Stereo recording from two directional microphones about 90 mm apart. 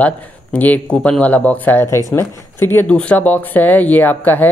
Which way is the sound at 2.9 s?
15° left (ahead or behind).